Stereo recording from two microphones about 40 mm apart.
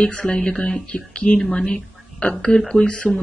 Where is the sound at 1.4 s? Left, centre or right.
Centre.